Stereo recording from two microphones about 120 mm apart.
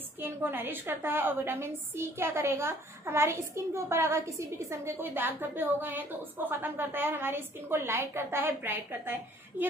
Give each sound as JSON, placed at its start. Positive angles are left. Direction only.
{"t": 0.2, "sound": "a woman's voice", "side_deg": -15}